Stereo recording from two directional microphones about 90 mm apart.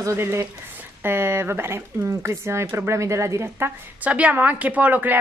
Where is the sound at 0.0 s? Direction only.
30° right (ahead or behind).